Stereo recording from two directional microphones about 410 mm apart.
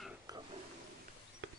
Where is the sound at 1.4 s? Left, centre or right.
Right.